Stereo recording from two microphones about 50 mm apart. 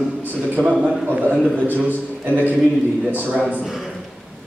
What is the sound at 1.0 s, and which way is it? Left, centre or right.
A man's voice, right.